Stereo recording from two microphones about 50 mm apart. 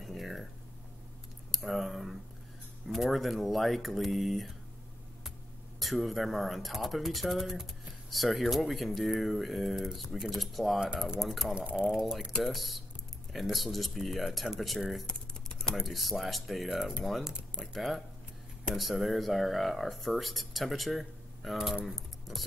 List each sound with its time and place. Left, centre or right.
0.0 s a sound: centre
1.5 s a sound: centre
2.9 s speech: centre
5.8 s speech: centre
11.5 s speech: right
11.9 s speech: centre
15.0 s typing: centre
15.7 s speech: centre